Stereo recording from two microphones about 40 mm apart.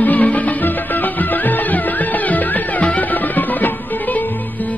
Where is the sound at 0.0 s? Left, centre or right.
Left.